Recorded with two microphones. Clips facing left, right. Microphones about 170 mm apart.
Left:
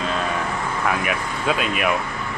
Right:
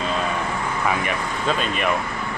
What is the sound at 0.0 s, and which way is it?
Vehicle, centre (ahead or behind).